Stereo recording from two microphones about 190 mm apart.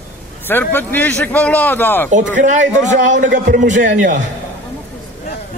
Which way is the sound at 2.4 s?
40° right (ahead or behind).